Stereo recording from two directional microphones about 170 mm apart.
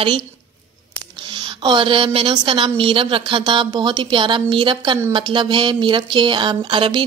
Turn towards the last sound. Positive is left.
turn(degrees=-30)  # may be behind; listen again after turning